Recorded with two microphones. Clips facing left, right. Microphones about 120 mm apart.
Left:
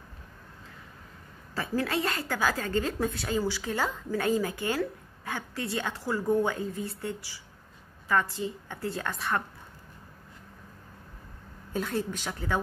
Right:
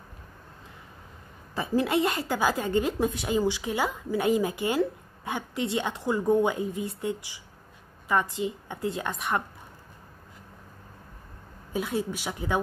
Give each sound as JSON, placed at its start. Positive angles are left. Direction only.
{"t": 1.5, "sound": "a woman's voice", "side_deg": -20}
{"t": 11.7, "sound": "a woman's voice", "side_deg": -10}